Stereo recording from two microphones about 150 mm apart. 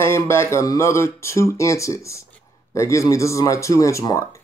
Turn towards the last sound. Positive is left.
turn(degrees=20)  # may be behind; listen again after turning